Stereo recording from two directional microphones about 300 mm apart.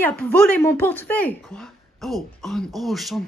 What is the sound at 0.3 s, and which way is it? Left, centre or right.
A woman's voice, centre.